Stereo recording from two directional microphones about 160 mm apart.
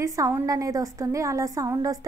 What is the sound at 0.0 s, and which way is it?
A woman's voice, 20° right (ahead or behind).